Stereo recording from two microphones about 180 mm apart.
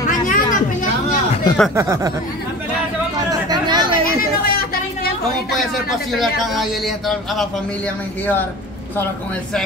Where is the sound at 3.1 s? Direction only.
20° right (ahead or behind).